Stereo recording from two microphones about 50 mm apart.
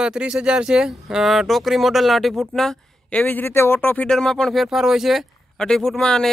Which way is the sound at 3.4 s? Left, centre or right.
Left.